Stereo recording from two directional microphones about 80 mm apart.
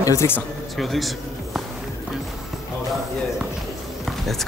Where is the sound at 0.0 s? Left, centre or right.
Left.